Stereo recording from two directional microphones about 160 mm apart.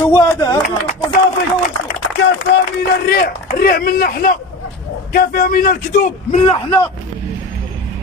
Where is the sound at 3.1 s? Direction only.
70° left (ahead or behind); by 6.4 s 50° left (ahead or behind).